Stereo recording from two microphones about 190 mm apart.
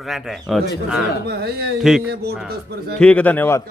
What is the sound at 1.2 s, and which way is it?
Speech, 60° right (ahead or behind).